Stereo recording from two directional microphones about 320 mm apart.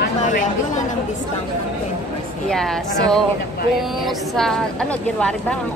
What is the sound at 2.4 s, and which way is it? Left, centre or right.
Speech, centre.